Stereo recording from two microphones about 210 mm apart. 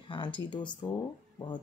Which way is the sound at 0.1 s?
25° left (ahead or behind).